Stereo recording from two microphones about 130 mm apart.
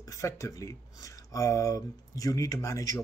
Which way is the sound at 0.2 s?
25° left (ahead or behind).